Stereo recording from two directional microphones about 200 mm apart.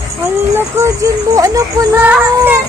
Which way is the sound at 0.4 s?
10° right (ahead or behind).